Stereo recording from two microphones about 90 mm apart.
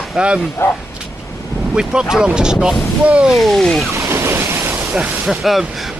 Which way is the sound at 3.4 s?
5° left (ahead or behind).